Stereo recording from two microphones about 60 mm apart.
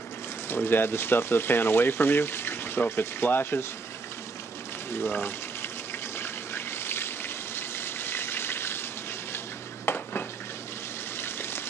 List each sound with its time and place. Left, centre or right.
0.7 s speech: left
4.9 s speech: left
6.1 s water: left
9.8 s a sound: left